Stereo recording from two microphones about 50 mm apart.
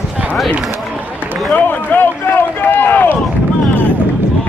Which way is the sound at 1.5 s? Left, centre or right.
Left.